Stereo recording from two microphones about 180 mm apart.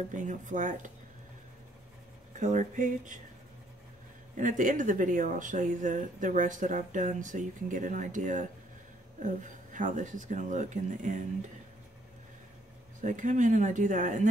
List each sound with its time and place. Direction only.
0.1 s speech: 45° right (ahead or behind)
2.3 s speech: 45° right (ahead or behind)
4.4 s speech: 45° right (ahead or behind)
13.0 s speech: 45° right (ahead or behind)